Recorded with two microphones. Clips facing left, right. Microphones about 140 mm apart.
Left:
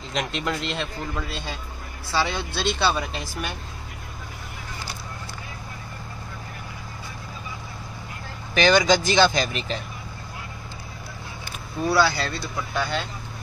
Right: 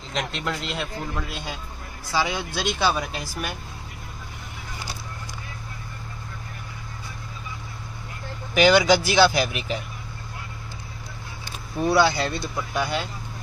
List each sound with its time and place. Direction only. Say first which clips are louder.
0.1 s speech: left 1 dB; centre (ahead or behind)
8.5 s speech: right 1 dB; 10° right (ahead or behind)
11.8 s speech: right 1 dB; 20° right (ahead or behind)